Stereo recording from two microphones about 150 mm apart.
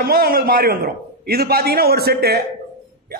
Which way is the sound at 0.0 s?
80° right.